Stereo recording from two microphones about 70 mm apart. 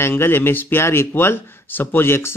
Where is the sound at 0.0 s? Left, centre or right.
Left.